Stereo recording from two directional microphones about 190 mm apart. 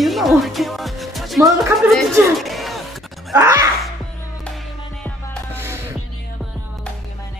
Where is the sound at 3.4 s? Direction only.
15° right (ahead or behind).